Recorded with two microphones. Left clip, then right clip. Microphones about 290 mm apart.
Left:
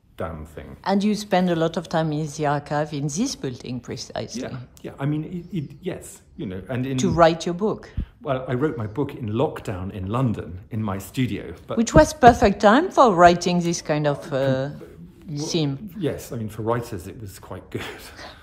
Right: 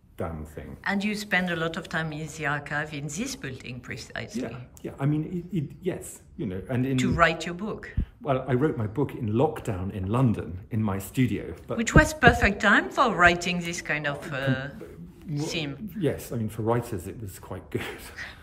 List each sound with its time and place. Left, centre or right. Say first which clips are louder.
0.2 s speech: left 3 dB; centre
16.1 s speech: left 1 dB; centre